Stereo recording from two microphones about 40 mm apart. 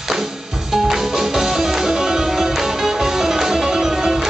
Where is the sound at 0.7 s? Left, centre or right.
Centre.